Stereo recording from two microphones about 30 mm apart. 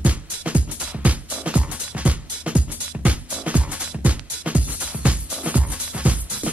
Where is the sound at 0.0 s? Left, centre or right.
Right.